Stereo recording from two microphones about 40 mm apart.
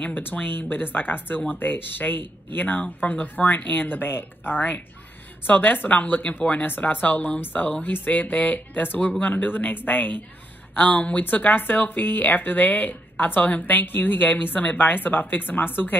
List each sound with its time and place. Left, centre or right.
0.2 s speech: left
10.8 s speech: left